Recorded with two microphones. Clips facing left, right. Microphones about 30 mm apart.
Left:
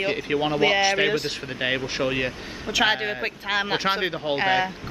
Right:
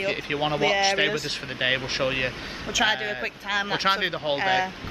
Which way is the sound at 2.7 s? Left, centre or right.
Left.